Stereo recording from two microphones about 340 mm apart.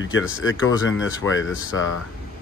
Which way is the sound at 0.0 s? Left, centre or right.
Left.